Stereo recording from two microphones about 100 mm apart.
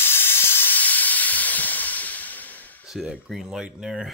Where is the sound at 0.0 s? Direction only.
20° left (ahead or behind).